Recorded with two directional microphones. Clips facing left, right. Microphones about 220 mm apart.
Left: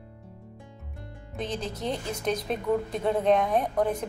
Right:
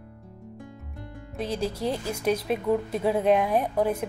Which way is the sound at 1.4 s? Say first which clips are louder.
Right 4 dB; 10° right (ahead or behind).